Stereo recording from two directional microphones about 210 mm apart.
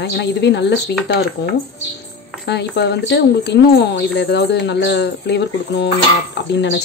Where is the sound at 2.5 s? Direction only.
55° left (ahead or behind).